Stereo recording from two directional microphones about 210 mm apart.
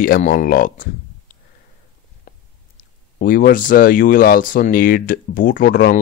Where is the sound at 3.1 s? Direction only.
40° left (ahead or behind).